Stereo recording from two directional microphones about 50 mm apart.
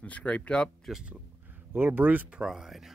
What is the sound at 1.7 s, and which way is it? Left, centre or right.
Speech, right.